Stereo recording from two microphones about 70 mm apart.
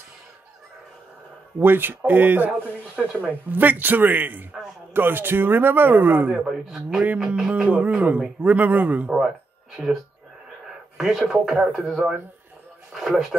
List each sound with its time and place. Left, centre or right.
1.6 s a man's voice: right
6.3 s a man's voice: centre
11.0 s speech: centre